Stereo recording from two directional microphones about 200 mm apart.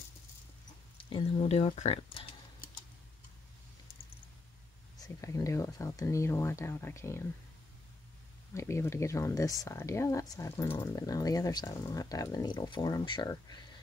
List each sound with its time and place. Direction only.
0.9 s speech: 30° left (ahead or behind)
4.9 s speech: 15° left (ahead or behind)
8.5 s speech: 15° left (ahead or behind)